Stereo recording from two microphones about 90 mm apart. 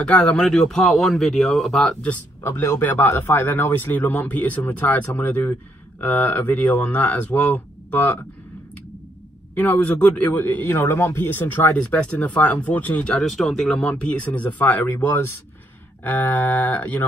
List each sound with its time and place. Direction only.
0.0 s speech: 10° left (ahead or behind)
2.4 s a man's voice: 30° left (ahead or behind)
9.6 s a man's voice: 15° left (ahead or behind)
13.2 s a man's voice: 5° left (ahead or behind); by 17.0 s 20° left (ahead or behind)